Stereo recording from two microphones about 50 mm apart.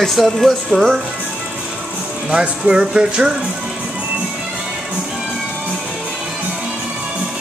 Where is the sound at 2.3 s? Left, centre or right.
Centre.